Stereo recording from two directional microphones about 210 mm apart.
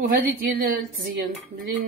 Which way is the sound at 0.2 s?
40° right (ahead or behind).